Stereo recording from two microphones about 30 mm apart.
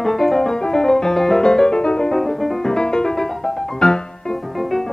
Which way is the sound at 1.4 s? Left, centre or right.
Left.